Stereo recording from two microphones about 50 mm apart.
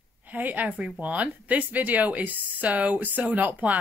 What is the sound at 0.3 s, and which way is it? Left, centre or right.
Speech, right.